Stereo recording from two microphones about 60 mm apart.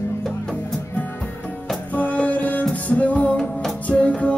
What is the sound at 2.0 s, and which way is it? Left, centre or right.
Music, left.